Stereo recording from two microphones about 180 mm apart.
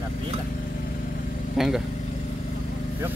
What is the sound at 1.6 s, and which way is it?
Speech, centre (ahead or behind).